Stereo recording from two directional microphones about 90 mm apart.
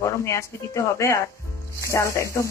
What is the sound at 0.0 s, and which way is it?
Speech, 35° left (ahead or behind).